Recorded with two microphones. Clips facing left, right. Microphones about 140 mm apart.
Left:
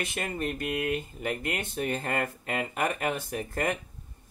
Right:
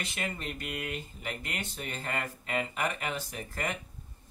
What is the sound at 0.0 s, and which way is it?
Mantra, 50° left (ahead or behind).